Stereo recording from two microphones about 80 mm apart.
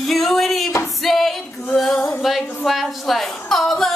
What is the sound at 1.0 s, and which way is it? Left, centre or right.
Female singing, centre.